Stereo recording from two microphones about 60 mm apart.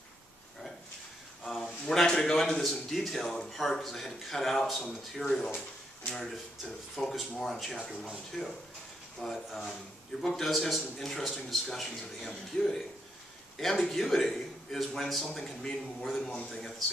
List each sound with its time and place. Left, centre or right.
1.4 s a man's voice: centre